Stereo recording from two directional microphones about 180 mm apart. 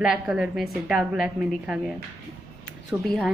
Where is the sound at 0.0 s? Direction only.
5° right (ahead or behind).